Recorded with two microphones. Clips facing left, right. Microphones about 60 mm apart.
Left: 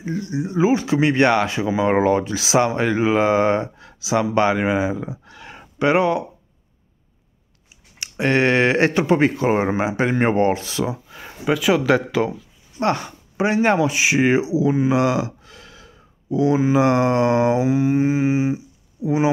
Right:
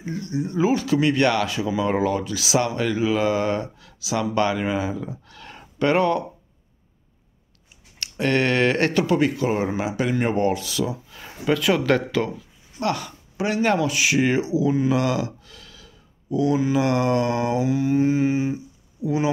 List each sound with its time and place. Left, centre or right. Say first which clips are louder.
0.0 s speech: left 2 dB; centre
8.0 s speech: left 3 dB; centre
11.5 s speech: left 3 dB; centre
12.8 s speech: left 4 dB; left